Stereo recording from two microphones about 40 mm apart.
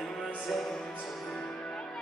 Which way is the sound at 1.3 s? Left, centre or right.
Left.